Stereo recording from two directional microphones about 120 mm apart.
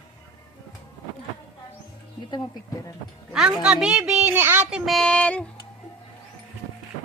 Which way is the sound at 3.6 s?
10° right (ahead or behind).